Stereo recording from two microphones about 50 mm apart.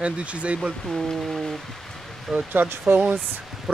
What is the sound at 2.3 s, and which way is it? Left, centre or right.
Speech, right.